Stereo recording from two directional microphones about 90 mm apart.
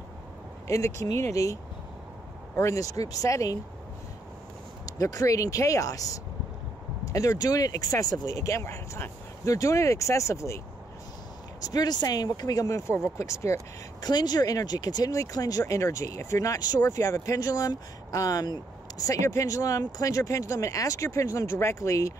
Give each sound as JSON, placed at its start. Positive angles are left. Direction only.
{"t": 0.7, "sound": "speech", "side_deg": 35}
{"t": 4.8, "sound": "speech", "side_deg": 45}
{"t": 11.6, "sound": "speech", "side_deg": 50}
{"t": 14.0, "sound": "speech", "side_deg": 50}